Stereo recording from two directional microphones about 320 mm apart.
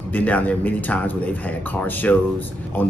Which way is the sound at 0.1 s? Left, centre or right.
Centre.